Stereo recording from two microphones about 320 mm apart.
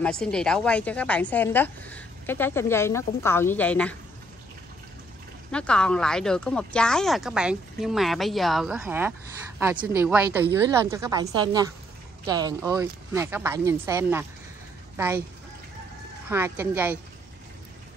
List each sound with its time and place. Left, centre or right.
0.0 s a woman's voice: centre
5.5 s a woman's voice: centre
16.3 s speech: centre